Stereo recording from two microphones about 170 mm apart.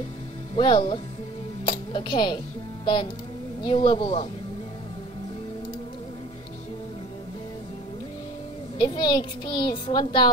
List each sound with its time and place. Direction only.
0.6 s a child's voice: 30° left (ahead or behind)
8.7 s a child's voice: 25° left (ahead or behind)